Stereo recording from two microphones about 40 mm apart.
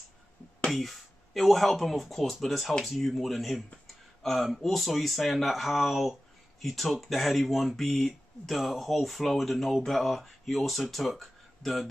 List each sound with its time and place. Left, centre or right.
0.7 s speech: centre